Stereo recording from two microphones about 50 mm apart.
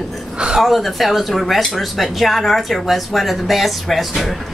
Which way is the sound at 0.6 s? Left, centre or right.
Centre.